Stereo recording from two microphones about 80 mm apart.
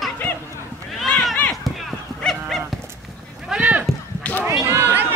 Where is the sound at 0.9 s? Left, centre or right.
Centre.